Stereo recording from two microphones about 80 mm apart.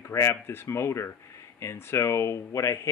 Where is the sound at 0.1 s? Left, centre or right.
Left.